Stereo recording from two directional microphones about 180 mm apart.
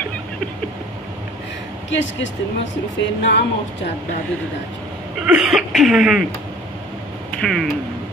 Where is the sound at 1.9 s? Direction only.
90° left.